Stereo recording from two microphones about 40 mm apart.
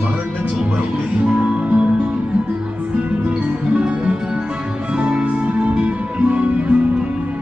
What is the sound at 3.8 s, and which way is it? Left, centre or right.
Music, right.